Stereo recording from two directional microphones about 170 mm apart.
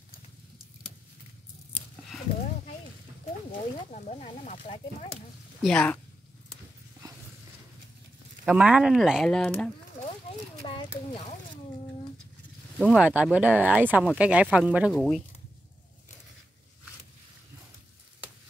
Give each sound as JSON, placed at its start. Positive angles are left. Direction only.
{"t": 3.9, "sound": "speech", "side_deg": 45}
{"t": 5.6, "sound": "speech", "side_deg": 5}
{"t": 8.5, "sound": "speech", "side_deg": -5}
{"t": 10.6, "sound": "a sound", "side_deg": 35}
{"t": 12.7, "sound": "speech", "side_deg": -5}